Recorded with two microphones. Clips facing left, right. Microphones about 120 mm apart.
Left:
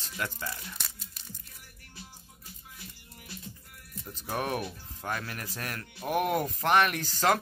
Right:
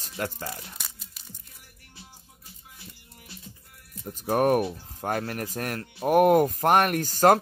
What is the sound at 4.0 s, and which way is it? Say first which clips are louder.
Speech: right 10 dB; 45° right (ahead or behind).